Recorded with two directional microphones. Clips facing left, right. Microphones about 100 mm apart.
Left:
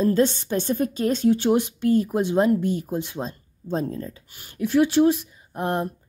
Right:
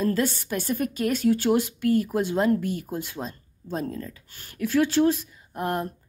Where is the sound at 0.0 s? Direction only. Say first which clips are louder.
Left 5 dB; 25° left (ahead or behind).